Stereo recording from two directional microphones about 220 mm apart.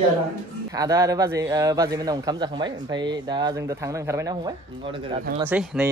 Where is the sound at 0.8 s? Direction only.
15° right (ahead or behind).